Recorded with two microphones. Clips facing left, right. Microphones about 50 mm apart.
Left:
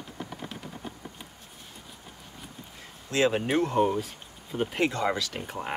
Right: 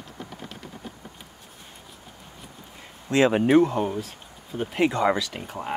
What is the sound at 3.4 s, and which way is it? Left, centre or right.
Speech, centre.